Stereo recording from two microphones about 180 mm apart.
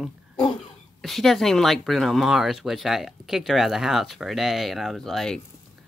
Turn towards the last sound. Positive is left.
turn(degrees=0)  # may be behind; listen again after turning